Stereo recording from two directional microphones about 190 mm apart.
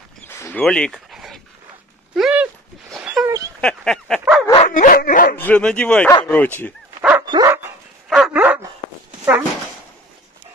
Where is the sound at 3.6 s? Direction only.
5° left (ahead or behind).